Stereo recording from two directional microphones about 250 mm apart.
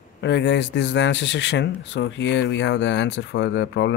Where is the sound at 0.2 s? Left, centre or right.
Left.